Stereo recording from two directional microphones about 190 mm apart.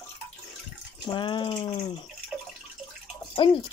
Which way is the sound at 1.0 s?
25° left (ahead or behind).